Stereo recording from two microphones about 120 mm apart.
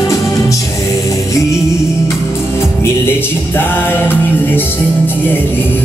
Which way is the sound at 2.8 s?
20° left (ahead or behind).